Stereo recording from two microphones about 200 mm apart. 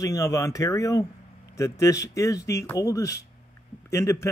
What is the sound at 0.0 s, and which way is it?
Speech, 15° left (ahead or behind).